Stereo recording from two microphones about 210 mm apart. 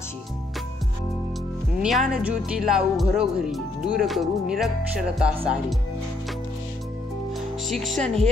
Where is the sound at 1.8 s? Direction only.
Centre (ahead or behind).